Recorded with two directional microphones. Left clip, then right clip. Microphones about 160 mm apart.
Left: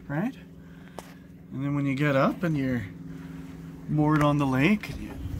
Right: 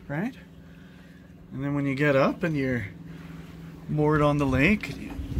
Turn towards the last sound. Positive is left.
turn(degrees=5)  # may be behind; listen again after turning